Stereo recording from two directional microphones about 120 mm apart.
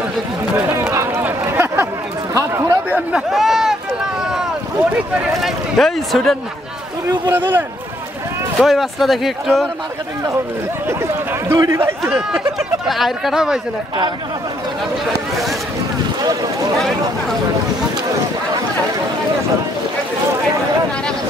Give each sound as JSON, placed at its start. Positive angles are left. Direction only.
{"t": 0.6, "sound": "a sound", "side_deg": -20}
{"t": 3.1, "sound": "speech", "side_deg": -5}
{"t": 5.4, "sound": "speech", "side_deg": 0}
{"t": 7.2, "sound": "speech", "side_deg": -15}
{"t": 8.5, "sound": "speech", "side_deg": 0}
{"t": 10.9, "sound": "speech", "side_deg": -20}
{"t": 12.0, "sound": "speech", "side_deg": -5}